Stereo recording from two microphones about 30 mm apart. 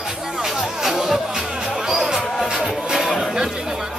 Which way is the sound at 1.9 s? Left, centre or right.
Right.